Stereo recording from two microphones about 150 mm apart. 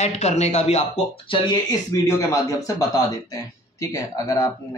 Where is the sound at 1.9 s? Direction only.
20° left (ahead or behind).